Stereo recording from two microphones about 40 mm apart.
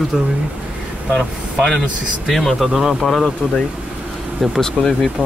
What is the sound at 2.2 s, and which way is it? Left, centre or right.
Mantra, centre.